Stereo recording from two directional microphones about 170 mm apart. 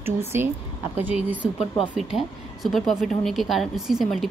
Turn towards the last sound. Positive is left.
turn(degrees=0)  # may be behind; listen again after turning